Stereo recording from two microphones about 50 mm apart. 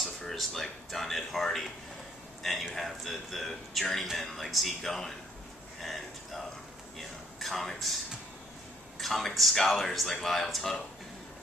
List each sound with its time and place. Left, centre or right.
0.0 s speech: centre
2.7 s speech: centre